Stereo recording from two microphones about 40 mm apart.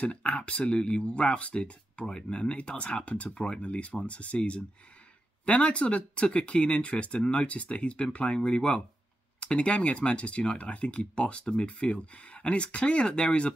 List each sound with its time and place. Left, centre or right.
0.0 s speech: left
2.5 s speech: left